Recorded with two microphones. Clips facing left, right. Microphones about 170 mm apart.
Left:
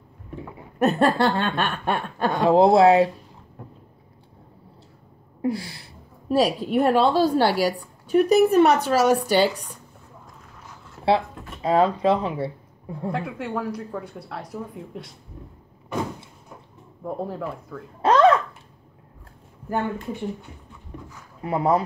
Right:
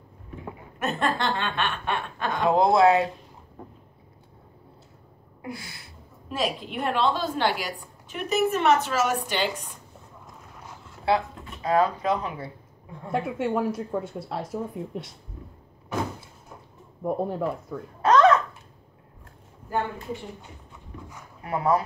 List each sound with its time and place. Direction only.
0.7 s a woman's voice: 35° left (ahead or behind)
5.4 s a woman's voice: 35° left (ahead or behind)
11.1 s speech: 30° left (ahead or behind)
13.1 s speech: 20° right (ahead or behind)
17.0 s speech: 20° right (ahead or behind)
18.0 s a sound: 30° left (ahead or behind)
21.4 s speech: 25° left (ahead or behind)